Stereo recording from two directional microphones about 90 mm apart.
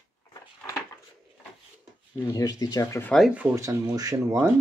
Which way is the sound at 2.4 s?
45° left (ahead or behind).